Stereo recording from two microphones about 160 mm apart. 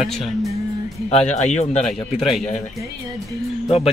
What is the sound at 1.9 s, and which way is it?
Speech, centre (ahead or behind).